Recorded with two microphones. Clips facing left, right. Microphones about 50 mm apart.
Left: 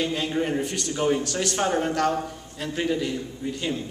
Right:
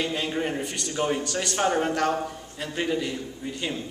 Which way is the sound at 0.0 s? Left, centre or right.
Centre.